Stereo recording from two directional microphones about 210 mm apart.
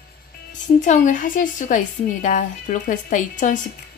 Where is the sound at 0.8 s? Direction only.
35° left (ahead or behind).